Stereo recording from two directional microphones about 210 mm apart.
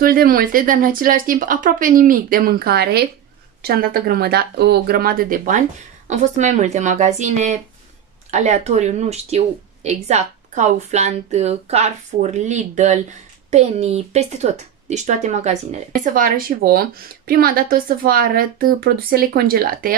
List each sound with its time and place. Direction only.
0.0 s a woman's voice: 45° right (ahead or behind)